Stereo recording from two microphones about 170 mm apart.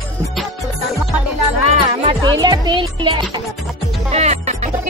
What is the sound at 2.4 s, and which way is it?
Music, 25° right (ahead or behind).